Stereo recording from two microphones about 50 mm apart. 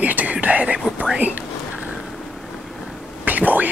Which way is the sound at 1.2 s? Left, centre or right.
Right.